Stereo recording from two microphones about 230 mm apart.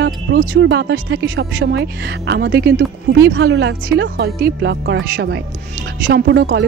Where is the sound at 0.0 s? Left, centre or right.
Right.